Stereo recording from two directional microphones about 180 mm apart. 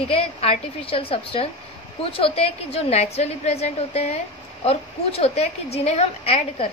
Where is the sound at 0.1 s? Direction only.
35° left (ahead or behind).